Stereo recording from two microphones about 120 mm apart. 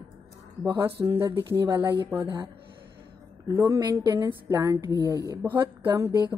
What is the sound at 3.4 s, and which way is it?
A woman's voice, 25° right (ahead or behind).